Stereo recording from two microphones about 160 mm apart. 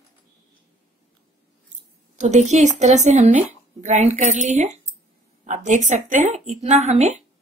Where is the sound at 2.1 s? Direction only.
45° right (ahead or behind).